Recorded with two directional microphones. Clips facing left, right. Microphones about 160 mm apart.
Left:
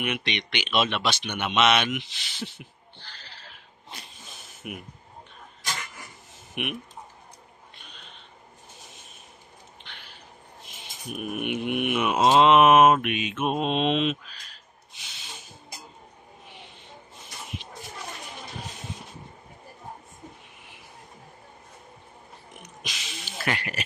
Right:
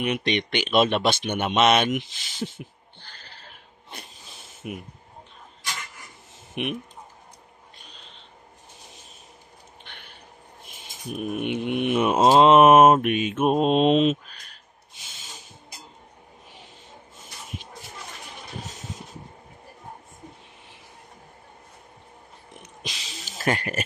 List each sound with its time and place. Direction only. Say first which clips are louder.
0.0 s speech: right 5 dB; 40° right (ahead or behind)
4.6 s speech: right 3 dB; 30° right (ahead or behind)
6.5 s speech: right 3 dB; 30° right (ahead or behind)
9.8 s a sound: right 1 dB; 55° right (ahead or behind)
11.1 s mantra: right 3 dB; 30° right (ahead or behind)
22.6 s a sound: right 2 dB; 30° right (ahead or behind)